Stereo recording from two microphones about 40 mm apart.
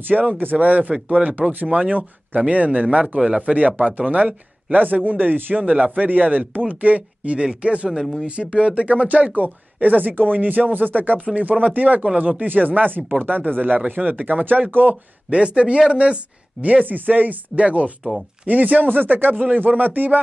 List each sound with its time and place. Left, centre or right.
0.1 s a man's voice: right
0.4 s a man's voice: right
4.8 s a man's voice: right
11.2 s a man's voice: right
15.2 s speech: right
16.6 s speech: right